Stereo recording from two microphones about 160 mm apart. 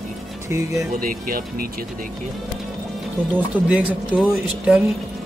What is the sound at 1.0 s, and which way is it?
Speech, 60° right (ahead or behind).